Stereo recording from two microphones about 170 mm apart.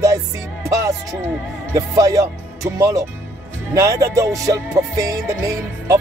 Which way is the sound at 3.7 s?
20° right (ahead or behind).